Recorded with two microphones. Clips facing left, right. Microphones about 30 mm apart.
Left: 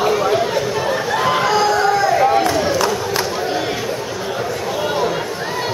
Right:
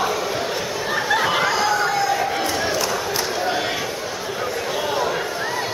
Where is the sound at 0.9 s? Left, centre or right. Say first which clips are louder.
Even; centre.